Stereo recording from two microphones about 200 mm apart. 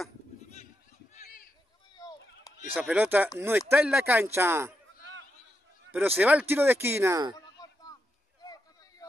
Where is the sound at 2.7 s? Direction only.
5° right (ahead or behind).